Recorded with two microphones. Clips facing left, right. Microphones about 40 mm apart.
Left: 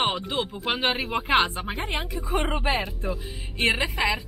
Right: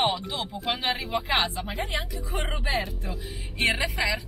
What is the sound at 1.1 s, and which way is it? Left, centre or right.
Speech, left.